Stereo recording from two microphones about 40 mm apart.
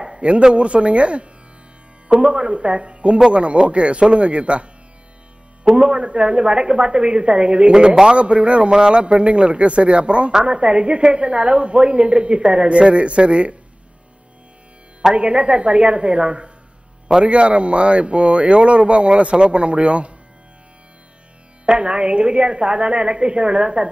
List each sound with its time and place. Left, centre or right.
0.0 s a sound: right
0.6 s a woman's voice: right
5.8 s a woman's voice: right
15.1 s a woman's voice: right
21.6 s a woman's voice: right